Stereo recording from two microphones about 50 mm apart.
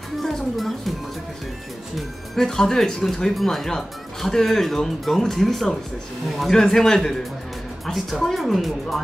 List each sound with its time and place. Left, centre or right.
0.2 s speech: centre
2.0 s a woman's voice: centre